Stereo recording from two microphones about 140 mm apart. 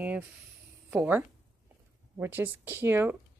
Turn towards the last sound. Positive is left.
turn(degrees=-15)  # may be behind; listen again after turning